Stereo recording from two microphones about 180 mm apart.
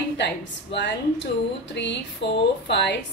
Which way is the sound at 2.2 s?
75° left (ahead or behind).